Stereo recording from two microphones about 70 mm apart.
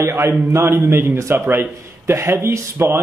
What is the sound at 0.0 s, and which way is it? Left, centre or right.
A man's voice, right.